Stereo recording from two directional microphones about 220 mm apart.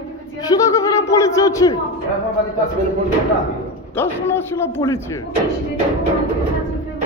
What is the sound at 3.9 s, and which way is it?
A man's voice, 10° left (ahead or behind).